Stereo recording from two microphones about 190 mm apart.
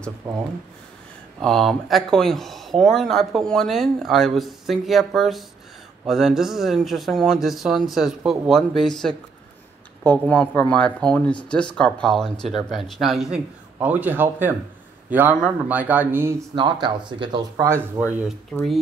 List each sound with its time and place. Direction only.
1.4 s speech: centre (ahead or behind)
18.5 s speech: 5° left (ahead or behind)